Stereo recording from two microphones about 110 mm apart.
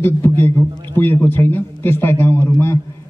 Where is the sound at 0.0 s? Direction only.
20° left (ahead or behind).